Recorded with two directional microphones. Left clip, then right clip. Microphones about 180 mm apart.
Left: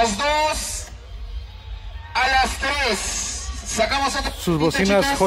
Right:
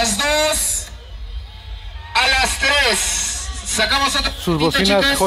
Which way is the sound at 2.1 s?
20° right (ahead or behind).